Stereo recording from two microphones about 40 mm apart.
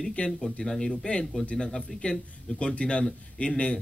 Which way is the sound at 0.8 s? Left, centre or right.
Left.